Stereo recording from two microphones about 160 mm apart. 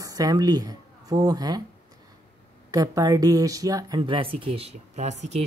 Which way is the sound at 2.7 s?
20° right (ahead or behind).